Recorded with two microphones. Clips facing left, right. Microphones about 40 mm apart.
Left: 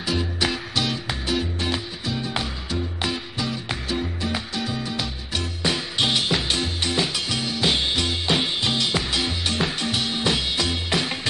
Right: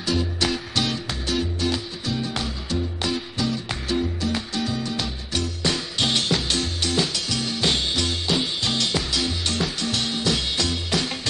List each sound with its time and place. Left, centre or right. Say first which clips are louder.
0.0 s music: even; centre